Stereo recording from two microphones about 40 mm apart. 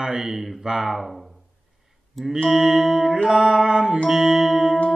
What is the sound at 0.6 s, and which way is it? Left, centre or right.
Speech, centre.